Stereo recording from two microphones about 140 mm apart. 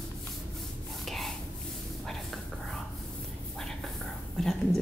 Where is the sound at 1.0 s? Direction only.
Centre (ahead or behind).